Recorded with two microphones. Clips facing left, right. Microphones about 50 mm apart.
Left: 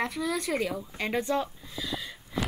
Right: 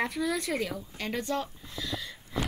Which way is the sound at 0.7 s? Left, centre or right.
Centre.